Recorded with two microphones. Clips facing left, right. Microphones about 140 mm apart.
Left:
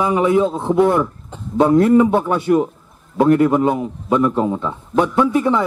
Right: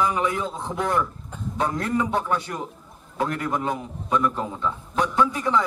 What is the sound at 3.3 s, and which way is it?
A man's voice, 25° left (ahead or behind).